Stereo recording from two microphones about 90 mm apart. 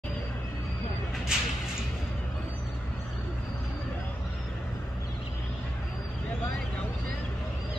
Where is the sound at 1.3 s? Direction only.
10° right (ahead or behind).